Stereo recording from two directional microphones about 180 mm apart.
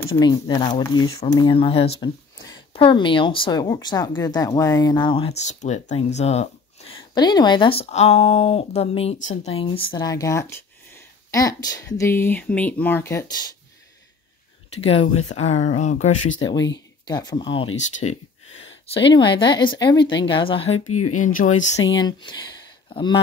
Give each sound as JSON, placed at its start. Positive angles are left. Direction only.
{"t": 0.0, "sound": "speech", "side_deg": 20}
{"t": 7.2, "sound": "speech", "side_deg": 25}
{"t": 14.8, "sound": "speech", "side_deg": 30}
{"t": 16.4, "sound": "speech", "side_deg": 20}
{"t": 17.7, "sound": "speech", "side_deg": 40}
{"t": 19.0, "sound": "speech", "side_deg": 25}
{"t": 21.2, "sound": "speech", "side_deg": 45}
{"t": 21.7, "sound": "speech", "side_deg": 25}